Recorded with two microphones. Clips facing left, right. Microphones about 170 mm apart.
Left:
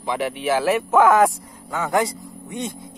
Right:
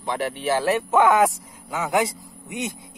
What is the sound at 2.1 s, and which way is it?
Speech, 20° right (ahead or behind).